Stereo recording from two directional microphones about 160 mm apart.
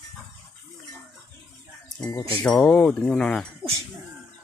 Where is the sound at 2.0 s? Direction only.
20° left (ahead or behind).